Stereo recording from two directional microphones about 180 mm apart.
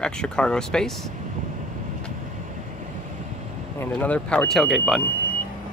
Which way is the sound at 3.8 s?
10° left (ahead or behind).